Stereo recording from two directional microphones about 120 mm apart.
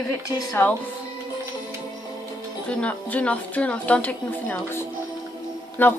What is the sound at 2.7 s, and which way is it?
Speech, 10° left (ahead or behind).